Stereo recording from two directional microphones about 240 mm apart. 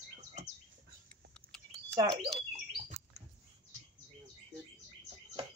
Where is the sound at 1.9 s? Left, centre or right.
Centre.